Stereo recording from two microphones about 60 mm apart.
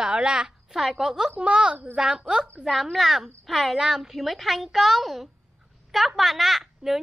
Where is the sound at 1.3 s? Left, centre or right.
Centre.